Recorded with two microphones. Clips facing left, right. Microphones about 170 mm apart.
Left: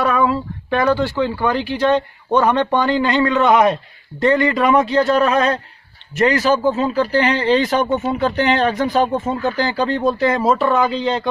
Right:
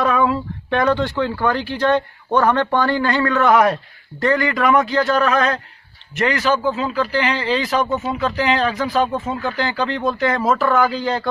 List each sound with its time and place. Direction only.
0.0 s speech: centre (ahead or behind); by 7.6 s 50° left (ahead or behind)
7.8 s speech: 25° left (ahead or behind)
8.1 s speech: 50° left (ahead or behind); by 11.2 s 25° left (ahead or behind)